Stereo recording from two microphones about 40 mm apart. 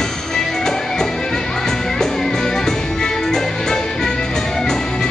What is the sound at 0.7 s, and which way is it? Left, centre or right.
Music, centre.